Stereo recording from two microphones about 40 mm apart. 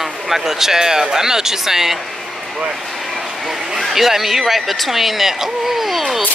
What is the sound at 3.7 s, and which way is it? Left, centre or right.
Speech, centre.